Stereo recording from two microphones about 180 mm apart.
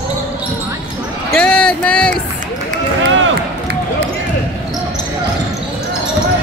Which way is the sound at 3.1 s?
90° right.